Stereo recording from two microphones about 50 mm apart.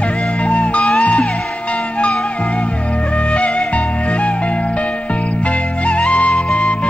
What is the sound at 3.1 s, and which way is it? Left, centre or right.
Music, left.